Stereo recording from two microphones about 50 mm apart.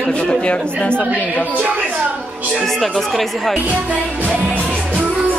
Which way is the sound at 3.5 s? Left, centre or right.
Right.